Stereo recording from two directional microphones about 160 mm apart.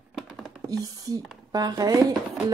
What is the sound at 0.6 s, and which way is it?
Speech, 20° right (ahead or behind).